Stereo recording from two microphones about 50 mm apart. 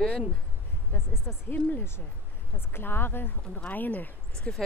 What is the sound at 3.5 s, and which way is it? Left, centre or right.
Speech, left.